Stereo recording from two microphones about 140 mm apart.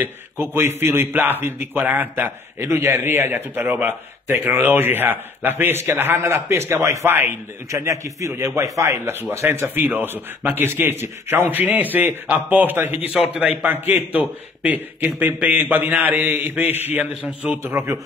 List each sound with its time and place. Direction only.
0.0 s speech: 15° right (ahead or behind)